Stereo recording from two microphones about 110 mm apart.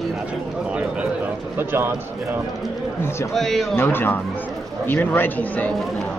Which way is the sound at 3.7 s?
20° left (ahead or behind).